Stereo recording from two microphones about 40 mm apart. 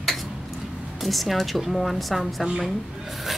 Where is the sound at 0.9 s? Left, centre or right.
Centre.